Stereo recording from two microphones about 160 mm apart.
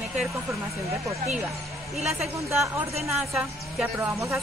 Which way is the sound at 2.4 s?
20° right (ahead or behind).